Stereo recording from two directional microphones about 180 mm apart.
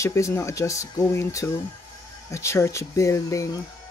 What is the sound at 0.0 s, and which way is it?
Speech, 15° left (ahead or behind).